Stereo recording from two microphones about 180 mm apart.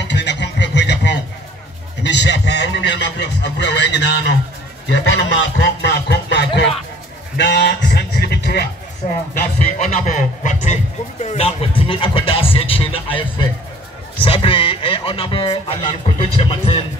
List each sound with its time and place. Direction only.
0.0 s a sound: 75° left (ahead or behind)
2.0 s speech: 75° left (ahead or behind)
4.8 s speech: 85° left
7.3 s music: 70° left (ahead or behind)
9.4 s speech: 40° left (ahead or behind)